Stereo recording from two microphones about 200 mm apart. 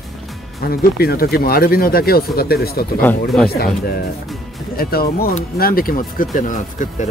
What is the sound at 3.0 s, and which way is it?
Speech, 5° left (ahead or behind).